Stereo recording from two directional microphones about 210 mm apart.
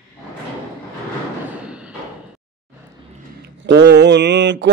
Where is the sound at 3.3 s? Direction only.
55° right (ahead or behind).